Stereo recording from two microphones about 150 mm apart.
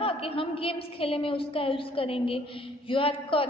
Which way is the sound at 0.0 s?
40° left (ahead or behind).